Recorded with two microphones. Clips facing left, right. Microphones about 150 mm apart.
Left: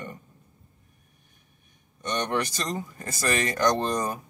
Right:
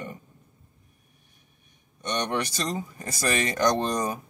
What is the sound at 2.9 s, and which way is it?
Speech, 15° right (ahead or behind).